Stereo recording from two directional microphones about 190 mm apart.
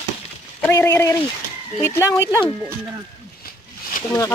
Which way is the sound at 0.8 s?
15° left (ahead or behind).